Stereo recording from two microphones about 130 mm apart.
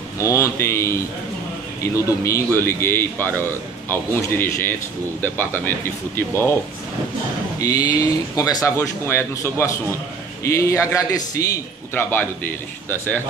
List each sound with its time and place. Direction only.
0.2 s a man's voice: 25° left (ahead or behind)
2.0 s a man's voice: 25° left (ahead or behind)
7.7 s a man's voice: 30° left (ahead or behind)